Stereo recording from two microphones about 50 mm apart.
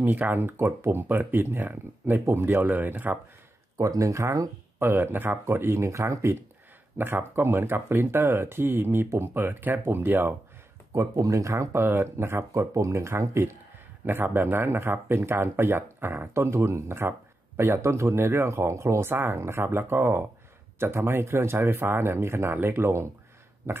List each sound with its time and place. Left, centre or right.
0.0 s speech: right
3.7 s speech: right
4.7 s speech: right
5.9 s speech: right
7.0 s speech: right
11.0 s speech: right
11.7 s speech: right
14.0 s speech: right
16.3 s speech: right